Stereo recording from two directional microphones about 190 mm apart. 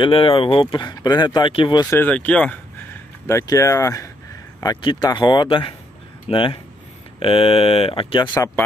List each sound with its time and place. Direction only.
0.0 s speech: 30° left (ahead or behind)
2.0 s speech: 5° left (ahead or behind); by 8.5 s 25° left (ahead or behind)